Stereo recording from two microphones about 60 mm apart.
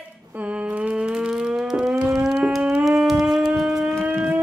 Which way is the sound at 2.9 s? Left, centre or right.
Centre.